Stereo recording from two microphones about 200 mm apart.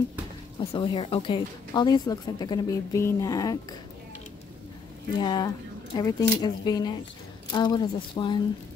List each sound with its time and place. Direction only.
0.6 s a woman's voice: 25° left (ahead or behind)
5.2 s a woman's voice: 20° left (ahead or behind)